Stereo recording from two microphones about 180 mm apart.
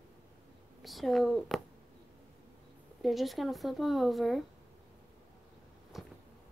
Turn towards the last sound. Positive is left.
turn(degrees=0)  # may be behind; listen again after turning